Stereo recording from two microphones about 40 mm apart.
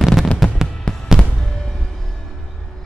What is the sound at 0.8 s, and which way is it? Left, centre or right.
Fireworks, centre.